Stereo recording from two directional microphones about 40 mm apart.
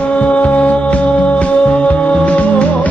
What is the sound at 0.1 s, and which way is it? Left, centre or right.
Music, left.